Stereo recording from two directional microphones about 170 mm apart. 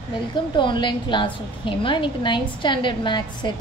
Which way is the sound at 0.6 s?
30° left (ahead or behind).